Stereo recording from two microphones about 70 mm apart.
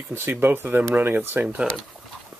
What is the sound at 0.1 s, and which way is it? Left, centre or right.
Speech, right.